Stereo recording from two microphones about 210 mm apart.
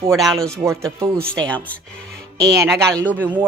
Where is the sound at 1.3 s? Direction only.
5° left (ahead or behind).